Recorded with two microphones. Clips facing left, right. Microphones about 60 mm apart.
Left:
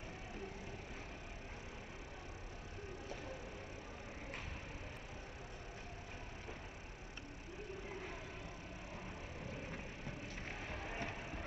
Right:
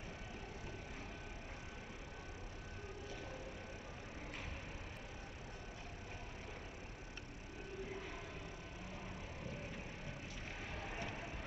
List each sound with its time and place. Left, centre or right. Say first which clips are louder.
10.7 s vehicle: left 1 dB; left